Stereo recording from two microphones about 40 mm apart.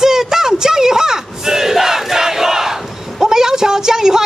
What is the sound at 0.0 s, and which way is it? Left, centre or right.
Battle cry, centre.